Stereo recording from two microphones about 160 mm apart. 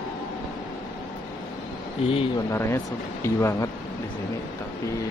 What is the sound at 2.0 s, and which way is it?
Speech, 35° left (ahead or behind).